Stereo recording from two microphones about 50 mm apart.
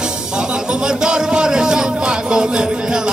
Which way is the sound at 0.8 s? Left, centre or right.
Centre.